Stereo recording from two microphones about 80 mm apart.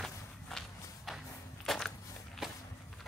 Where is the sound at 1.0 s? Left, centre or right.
Centre.